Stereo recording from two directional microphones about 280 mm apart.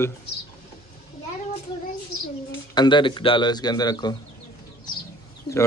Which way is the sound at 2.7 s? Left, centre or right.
Centre.